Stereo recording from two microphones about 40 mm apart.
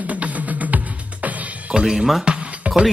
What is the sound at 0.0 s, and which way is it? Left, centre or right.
Music, right.